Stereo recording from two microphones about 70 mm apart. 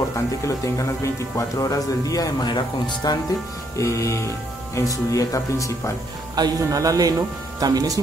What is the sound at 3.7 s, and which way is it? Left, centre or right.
Speech, left.